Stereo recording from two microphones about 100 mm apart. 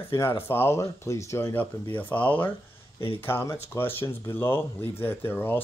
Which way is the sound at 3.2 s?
25° left (ahead or behind).